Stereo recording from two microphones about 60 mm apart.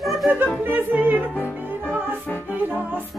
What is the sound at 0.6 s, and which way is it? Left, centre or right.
Music, right.